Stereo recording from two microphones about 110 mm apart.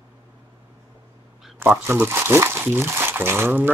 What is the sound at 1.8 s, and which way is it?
Speech, 20° right (ahead or behind).